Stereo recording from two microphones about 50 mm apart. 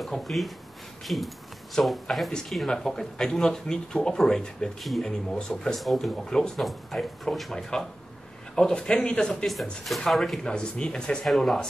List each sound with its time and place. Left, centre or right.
0.0 s speech: centre
8.5 s speech: centre
10.4 s speech: centre